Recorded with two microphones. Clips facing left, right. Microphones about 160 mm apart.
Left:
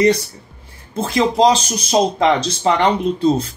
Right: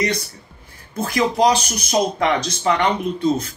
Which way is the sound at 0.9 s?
25° left (ahead or behind).